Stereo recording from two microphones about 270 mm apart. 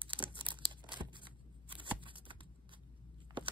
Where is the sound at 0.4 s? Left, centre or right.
Centre.